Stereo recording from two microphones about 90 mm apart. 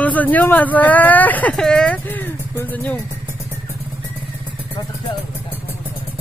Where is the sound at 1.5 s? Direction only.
10° left (ahead or behind).